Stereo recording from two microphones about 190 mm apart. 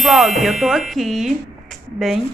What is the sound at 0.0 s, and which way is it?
A woman's voice, centre (ahead or behind).